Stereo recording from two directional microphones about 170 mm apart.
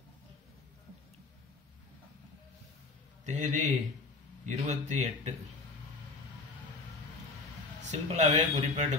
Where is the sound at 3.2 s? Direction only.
45° right (ahead or behind).